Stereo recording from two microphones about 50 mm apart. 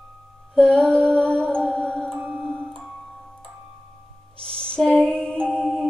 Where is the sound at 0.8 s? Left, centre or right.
Centre.